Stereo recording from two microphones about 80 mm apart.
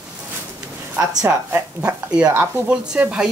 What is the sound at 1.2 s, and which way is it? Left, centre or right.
Speech, right.